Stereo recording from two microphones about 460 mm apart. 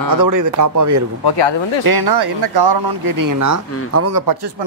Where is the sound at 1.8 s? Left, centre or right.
Right.